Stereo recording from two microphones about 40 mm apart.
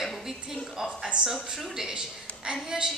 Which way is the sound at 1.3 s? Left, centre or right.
Centre.